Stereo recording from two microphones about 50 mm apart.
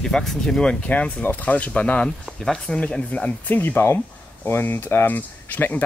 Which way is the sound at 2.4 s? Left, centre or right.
Centre.